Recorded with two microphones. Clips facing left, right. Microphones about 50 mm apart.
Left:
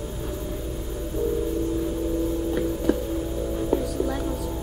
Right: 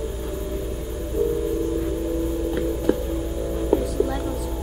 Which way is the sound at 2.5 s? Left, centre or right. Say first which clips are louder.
Right 2 dB; centre.